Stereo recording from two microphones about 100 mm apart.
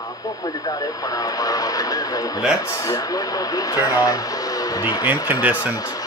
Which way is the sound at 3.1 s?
40° left (ahead or behind).